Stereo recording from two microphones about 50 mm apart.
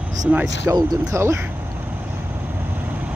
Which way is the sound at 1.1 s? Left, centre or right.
Right.